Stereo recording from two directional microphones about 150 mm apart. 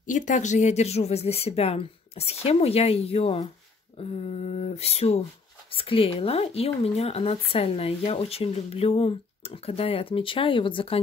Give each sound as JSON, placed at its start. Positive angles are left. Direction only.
{"t": 0.0, "sound": "speech", "side_deg": 55}